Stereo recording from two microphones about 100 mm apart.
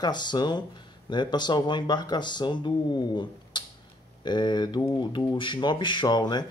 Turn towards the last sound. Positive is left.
turn(degrees=45)  # may be behind; listen again after turning